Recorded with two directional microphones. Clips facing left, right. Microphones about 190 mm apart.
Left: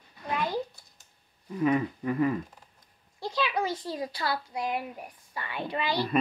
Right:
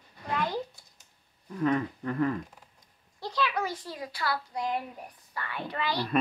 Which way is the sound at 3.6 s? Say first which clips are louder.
Left 4 dB; 25° left (ahead or behind).